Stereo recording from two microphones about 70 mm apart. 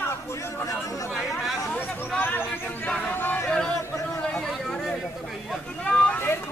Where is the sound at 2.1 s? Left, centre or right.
Left.